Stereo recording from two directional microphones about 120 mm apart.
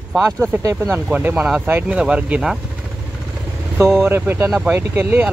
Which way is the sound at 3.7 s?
20° right (ahead or behind).